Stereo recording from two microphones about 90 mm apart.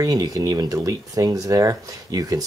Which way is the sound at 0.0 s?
45° right (ahead or behind).